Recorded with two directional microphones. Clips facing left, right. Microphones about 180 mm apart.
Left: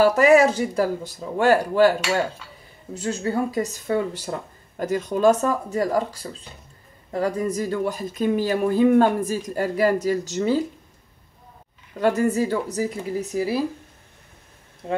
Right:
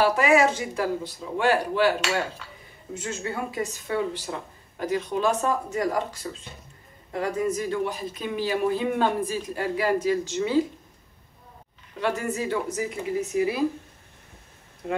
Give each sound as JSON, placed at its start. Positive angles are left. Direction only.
{"t": 0.0, "sound": "speech", "side_deg": 40}
{"t": 12.0, "sound": "speech", "side_deg": 40}